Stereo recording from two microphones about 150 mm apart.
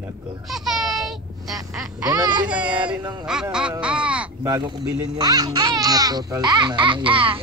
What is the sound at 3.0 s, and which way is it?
Speech, 30° right (ahead or behind).